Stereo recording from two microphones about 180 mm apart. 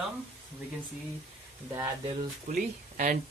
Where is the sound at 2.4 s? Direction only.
50° right (ahead or behind).